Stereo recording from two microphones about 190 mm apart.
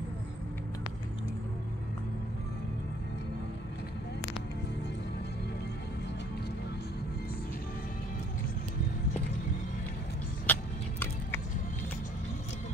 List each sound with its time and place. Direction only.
10.4 s vehicle: 10° left (ahead or behind)